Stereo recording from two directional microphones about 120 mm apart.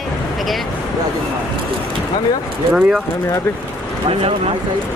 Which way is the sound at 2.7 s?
5° right (ahead or behind).